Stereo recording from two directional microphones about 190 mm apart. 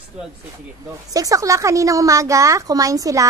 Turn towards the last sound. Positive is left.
turn(degrees=-15)  # may be behind; listen again after turning